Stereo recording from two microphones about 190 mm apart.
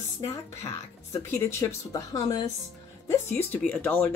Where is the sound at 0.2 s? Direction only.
15° left (ahead or behind).